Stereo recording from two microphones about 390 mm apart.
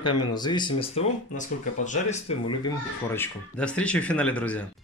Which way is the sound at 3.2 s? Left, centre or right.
Centre.